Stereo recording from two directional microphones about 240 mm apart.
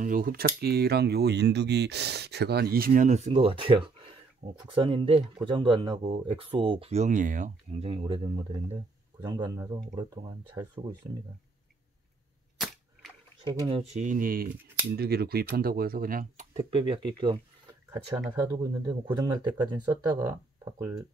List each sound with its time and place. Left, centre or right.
0.0 s speech: right; by 11.2 s centre
12.5 s cap gun: centre
13.4 s speech: centre